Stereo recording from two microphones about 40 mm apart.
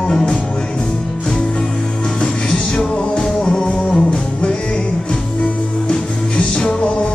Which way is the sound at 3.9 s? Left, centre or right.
Left.